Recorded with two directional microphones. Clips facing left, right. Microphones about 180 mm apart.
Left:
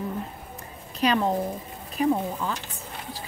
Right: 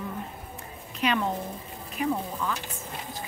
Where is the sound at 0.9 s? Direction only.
35° left (ahead or behind).